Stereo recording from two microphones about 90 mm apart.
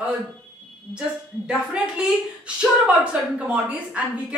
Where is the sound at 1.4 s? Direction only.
10° right (ahead or behind).